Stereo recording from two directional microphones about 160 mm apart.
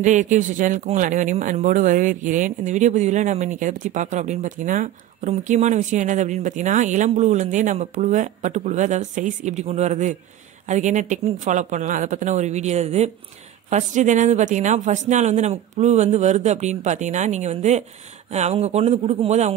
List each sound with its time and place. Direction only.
0.0 s speech: 50° right (ahead or behind)